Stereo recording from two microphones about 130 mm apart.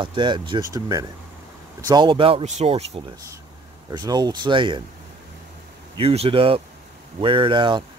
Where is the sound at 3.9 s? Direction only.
35° right (ahead or behind).